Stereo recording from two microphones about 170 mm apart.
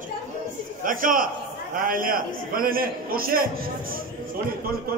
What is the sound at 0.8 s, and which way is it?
A man's voice, 55° right (ahead or behind).